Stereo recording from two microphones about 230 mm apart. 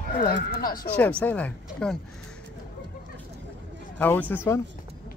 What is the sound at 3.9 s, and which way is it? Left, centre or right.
Speech, centre.